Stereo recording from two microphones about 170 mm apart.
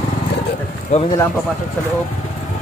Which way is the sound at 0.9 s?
45° left (ahead or behind).